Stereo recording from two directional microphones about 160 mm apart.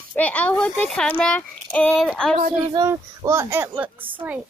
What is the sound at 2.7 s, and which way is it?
A woman's voice, 20° right (ahead or behind).